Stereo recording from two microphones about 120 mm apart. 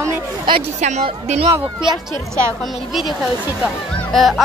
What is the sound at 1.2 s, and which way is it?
Speech, 65° right (ahead or behind).